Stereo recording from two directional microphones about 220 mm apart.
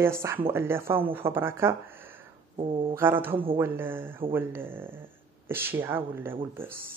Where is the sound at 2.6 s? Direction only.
25° right (ahead or behind).